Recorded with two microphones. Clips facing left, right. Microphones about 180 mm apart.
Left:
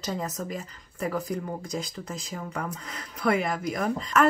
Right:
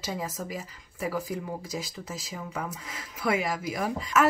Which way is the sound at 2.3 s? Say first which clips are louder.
Left 2 dB; 45° left (ahead or behind).